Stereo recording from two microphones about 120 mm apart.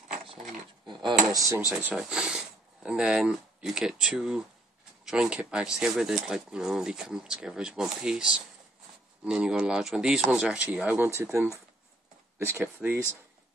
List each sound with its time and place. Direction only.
0.8 s speech: 40° right (ahead or behind)
1.2 s speech: 30° right (ahead or behind)
1.8 s speech: 10° right (ahead or behind)
11.1 s speech: 25° right (ahead or behind)